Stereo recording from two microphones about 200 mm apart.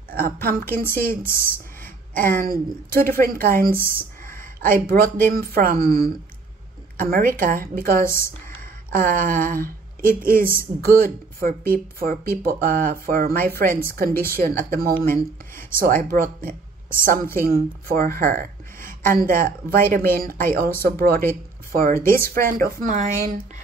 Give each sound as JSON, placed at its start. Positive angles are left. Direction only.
{"t": 0.4, "sound": "speech", "side_deg": -45}
{"t": 2.1, "sound": "speech", "side_deg": -45}
{"t": 4.2, "sound": "a sound", "side_deg": -45}
{"t": 5.2, "sound": "speech", "side_deg": -45}
{"t": 8.0, "sound": "speech", "side_deg": 15}
{"t": 8.9, "sound": "a woman's voice", "side_deg": -40}